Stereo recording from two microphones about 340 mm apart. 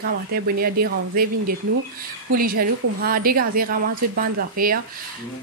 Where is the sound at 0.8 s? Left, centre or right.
Right.